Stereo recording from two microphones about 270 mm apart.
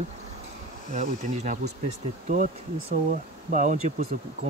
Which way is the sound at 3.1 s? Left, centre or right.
Right.